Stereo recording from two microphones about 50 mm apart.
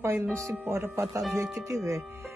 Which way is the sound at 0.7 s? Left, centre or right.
Right.